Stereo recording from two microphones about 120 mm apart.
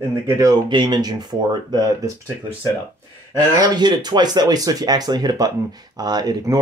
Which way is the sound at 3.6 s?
35° right (ahead or behind).